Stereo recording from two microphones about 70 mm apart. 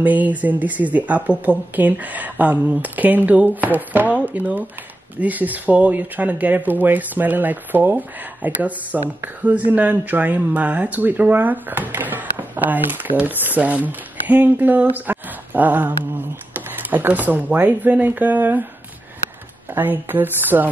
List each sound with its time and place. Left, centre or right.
0.0 s speech: right
19.7 s speech: right